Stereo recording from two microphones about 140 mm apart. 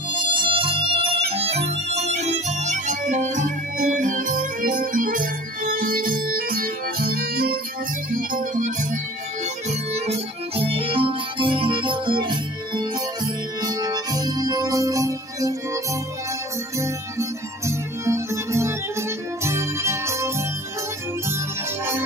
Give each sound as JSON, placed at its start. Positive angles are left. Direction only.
{"t": 0.1, "sound": "music", "side_deg": -35}
{"t": 8.1, "sound": "music", "side_deg": -75}
{"t": 9.7, "sound": "music", "side_deg": -50}